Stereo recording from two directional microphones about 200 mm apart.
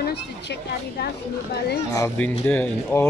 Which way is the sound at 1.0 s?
55° left (ahead or behind).